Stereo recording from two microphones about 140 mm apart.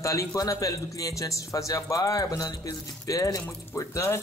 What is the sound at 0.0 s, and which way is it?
A man's voice, 25° left (ahead or behind).